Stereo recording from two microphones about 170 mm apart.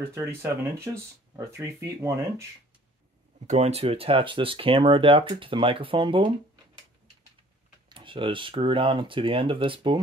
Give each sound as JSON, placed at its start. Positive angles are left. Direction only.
{"t": 0.1, "sound": "speech", "side_deg": -15}
{"t": 3.3, "sound": "speech", "side_deg": -40}
{"t": 7.9, "sound": "speech", "side_deg": -30}